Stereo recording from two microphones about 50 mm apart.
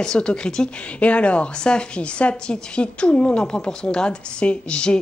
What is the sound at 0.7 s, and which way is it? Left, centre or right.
A woman's voice, left.